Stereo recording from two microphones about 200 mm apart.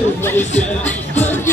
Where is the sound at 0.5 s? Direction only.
35° left (ahead or behind).